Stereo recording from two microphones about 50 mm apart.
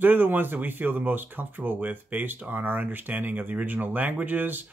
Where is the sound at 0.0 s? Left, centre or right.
Right.